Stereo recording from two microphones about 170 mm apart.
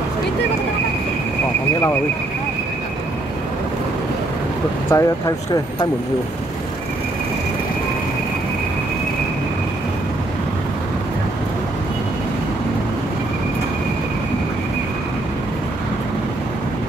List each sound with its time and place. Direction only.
4.8 s speech: 20° left (ahead or behind)